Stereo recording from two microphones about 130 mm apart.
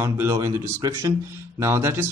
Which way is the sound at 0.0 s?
20° right (ahead or behind).